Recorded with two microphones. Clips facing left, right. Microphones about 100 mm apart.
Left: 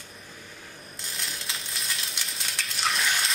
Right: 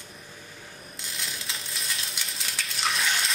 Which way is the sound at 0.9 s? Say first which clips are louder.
Even; centre (ahead or behind).